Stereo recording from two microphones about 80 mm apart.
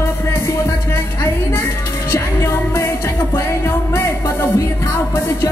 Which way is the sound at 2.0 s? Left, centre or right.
Left.